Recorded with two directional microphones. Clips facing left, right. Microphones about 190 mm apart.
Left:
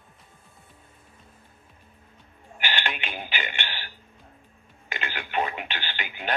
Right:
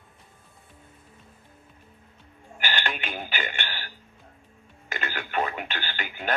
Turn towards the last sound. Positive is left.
turn(degrees=-45)  # may be behind; listen again after turning